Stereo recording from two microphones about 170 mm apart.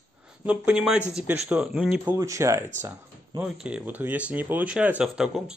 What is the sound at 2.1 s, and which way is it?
Speech, 15° right (ahead or behind).